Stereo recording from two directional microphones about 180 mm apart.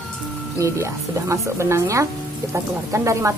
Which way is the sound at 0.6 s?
15° right (ahead or behind).